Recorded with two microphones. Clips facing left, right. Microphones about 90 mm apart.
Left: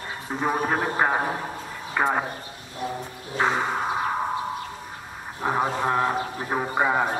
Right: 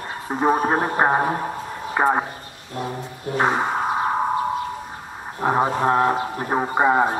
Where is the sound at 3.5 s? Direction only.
20° right (ahead or behind).